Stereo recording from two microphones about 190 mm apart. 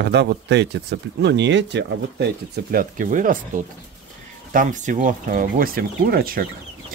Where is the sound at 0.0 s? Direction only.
65° right (ahead or behind).